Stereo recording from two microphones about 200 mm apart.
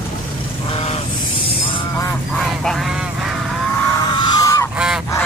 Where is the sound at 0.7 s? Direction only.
30° left (ahead or behind).